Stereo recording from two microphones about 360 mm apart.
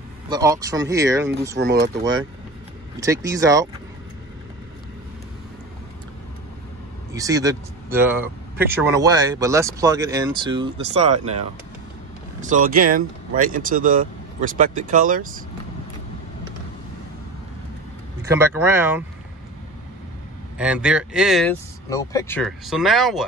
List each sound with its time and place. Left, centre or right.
0.3 s speech: centre
1.6 s speech: right
3.0 s speech: centre
7.2 s speech: centre
18.3 s speech: centre
20.5 s speech: centre